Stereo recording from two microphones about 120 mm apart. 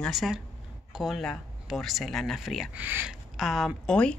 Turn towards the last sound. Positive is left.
turn(degrees=10)  # may be behind; listen again after turning